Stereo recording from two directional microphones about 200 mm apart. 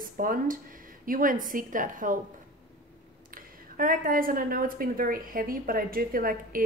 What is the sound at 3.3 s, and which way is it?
A woman's voice, 45° right (ahead or behind).